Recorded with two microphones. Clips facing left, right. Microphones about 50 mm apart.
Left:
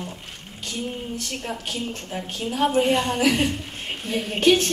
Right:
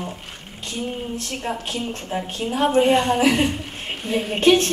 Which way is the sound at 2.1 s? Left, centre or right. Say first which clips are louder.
Right 4 dB; centre.